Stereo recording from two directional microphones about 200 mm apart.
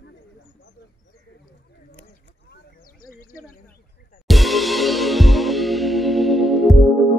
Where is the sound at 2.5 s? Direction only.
45° left (ahead or behind).